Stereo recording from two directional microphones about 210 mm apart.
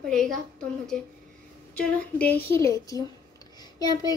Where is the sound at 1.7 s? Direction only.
5° left (ahead or behind).